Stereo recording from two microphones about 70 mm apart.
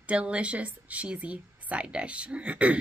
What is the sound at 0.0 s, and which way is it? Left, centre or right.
A woman's voice, centre.